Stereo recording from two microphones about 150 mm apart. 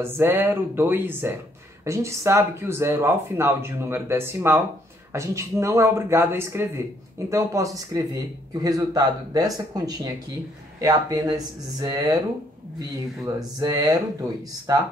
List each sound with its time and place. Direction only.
0.0 s speech: 15° right (ahead or behind)